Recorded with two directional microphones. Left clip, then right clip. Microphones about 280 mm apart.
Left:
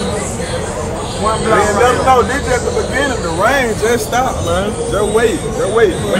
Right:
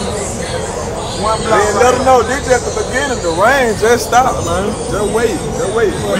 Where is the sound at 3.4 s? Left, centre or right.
Right.